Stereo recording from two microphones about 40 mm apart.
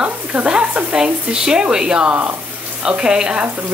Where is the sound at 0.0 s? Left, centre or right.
Right.